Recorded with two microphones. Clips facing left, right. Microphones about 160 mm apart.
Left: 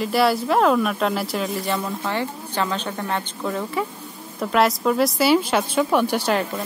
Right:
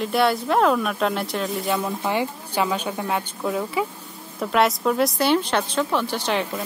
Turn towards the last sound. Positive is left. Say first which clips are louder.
# left 4 dB
turn(degrees=10)  # may be behind; listen again after turning